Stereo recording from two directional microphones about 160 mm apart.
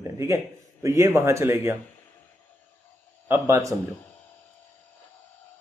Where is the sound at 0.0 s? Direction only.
20° right (ahead or behind).